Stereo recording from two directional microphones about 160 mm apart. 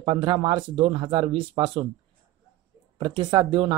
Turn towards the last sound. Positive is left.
turn(degrees=-30)  # may be behind; listen again after turning